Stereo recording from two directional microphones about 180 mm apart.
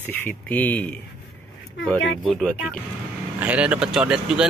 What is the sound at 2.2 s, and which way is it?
Speech, centre (ahead or behind).